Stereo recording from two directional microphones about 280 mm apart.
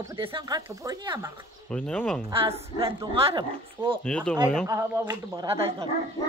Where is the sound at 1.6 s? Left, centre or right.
Centre.